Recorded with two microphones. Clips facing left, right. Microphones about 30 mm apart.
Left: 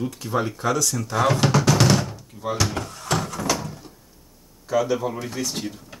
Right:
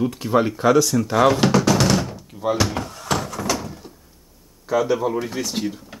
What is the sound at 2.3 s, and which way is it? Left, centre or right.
Cupboard open or close, centre.